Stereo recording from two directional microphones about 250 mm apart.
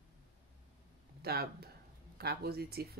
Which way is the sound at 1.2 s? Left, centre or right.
Right.